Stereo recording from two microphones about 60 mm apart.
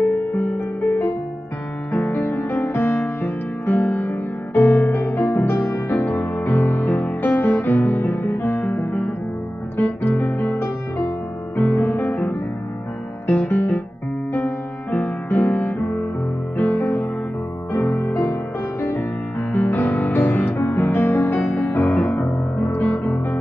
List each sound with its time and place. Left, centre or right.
0.3 s music: left
5.5 s music: left
6.1 s music: left
15.2 s music: left
17.7 s music: left
18.2 s music: left